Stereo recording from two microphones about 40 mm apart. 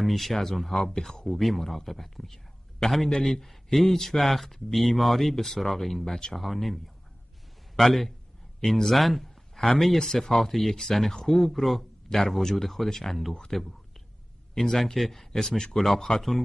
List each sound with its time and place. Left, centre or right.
0.0 s a man's voice: centre